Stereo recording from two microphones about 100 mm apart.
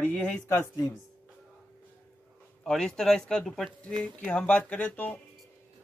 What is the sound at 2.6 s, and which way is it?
Speech, 5° left (ahead or behind).